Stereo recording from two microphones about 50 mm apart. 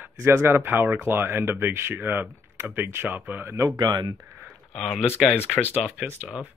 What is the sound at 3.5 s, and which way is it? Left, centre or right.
Speech, right.